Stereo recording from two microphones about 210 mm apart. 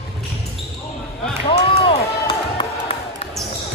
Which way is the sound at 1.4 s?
25° left (ahead or behind).